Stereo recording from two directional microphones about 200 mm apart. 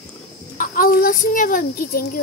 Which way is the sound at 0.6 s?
45° left (ahead or behind).